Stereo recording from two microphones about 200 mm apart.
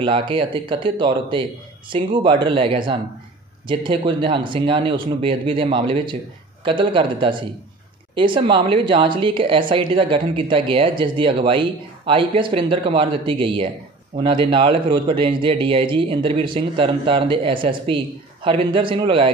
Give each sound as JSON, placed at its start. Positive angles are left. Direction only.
{"t": 0.0, "sound": "speech", "side_deg": -25}